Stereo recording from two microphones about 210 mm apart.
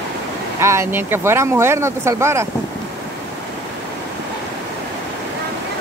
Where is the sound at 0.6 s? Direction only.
15° right (ahead or behind).